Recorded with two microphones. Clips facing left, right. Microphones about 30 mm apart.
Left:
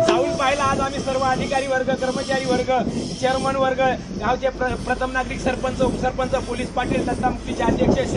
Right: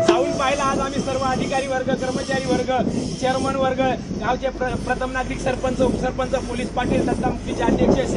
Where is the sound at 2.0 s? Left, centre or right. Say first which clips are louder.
Left 1 dB; left.